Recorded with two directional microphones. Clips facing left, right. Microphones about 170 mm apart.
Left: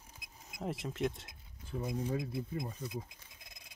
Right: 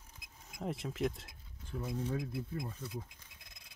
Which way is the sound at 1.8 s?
15° left (ahead or behind).